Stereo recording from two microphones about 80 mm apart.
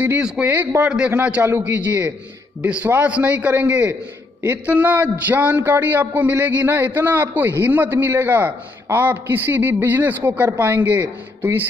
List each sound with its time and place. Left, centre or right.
0.2 s a man's voice: centre